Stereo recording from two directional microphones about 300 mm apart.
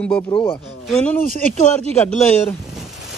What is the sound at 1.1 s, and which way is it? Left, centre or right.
Speech, left.